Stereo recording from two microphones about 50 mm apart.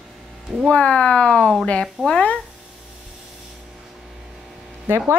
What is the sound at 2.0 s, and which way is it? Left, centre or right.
Speech, centre.